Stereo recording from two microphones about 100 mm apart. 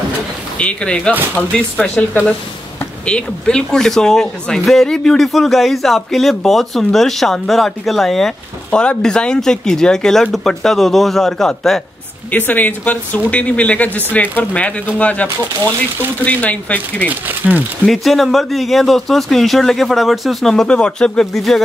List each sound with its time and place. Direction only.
0.6 s speech: 10° left (ahead or behind)
12.3 s speech: 20° left (ahead or behind)
16.3 s speech: 15° left (ahead or behind)
17.1 s speech: 15° right (ahead or behind)
17.8 s speech: 5° left (ahead or behind)